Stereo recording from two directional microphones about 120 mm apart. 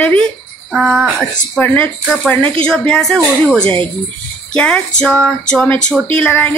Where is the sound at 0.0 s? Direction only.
10° left (ahead or behind).